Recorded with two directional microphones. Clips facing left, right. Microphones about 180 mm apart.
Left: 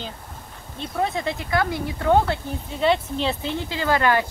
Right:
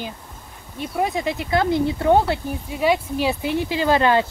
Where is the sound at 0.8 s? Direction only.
10° right (ahead or behind).